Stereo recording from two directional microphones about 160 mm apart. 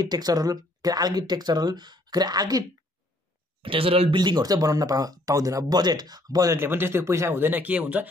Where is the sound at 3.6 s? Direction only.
35° right (ahead or behind).